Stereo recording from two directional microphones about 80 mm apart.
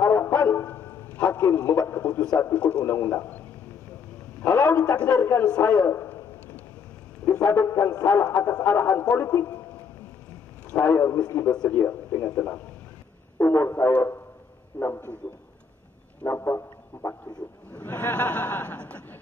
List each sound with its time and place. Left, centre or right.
0.0 s brass instrument: left
1.1 s a sound: centre
1.7 s speech: left
2.0 s a man's voice: centre
4.5 s speech: left
4.9 s a man's voice: centre
7.3 s a man's voice: left
10.7 s a man's voice: left
12.4 s a man's voice: left
13.4 s a man's voice: left
16.3 s music: left
17.7 s a man's voice: left